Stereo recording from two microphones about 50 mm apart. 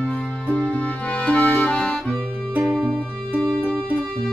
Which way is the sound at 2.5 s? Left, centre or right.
Right.